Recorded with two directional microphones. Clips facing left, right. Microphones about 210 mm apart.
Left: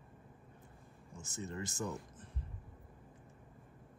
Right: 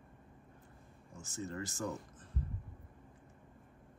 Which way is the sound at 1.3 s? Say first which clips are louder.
Right 1 dB; 20° left (ahead or behind).